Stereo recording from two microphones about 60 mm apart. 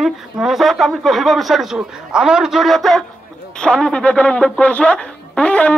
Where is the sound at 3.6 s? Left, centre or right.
Centre.